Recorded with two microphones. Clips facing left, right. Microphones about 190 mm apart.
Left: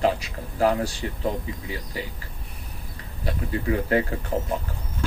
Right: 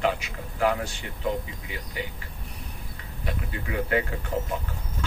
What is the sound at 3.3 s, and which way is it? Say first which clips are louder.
A man's voice: left 7 dB; 35° left (ahead or behind).